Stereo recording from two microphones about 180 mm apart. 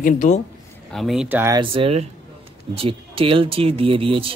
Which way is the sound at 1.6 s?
30° right (ahead or behind).